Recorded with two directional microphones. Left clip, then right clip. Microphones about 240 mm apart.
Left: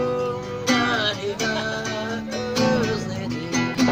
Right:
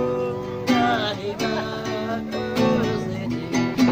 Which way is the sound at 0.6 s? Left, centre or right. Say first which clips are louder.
Even; centre.